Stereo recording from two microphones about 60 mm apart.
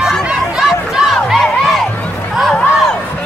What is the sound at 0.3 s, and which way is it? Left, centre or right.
Crowd, centre.